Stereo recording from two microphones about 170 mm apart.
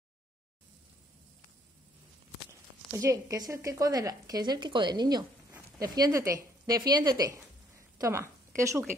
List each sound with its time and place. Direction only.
2.9 s speech: 20° right (ahead or behind)